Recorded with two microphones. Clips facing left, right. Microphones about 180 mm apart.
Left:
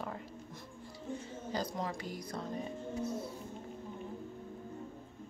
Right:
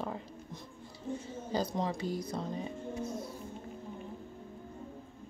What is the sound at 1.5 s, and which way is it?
Speech, 25° right (ahead or behind).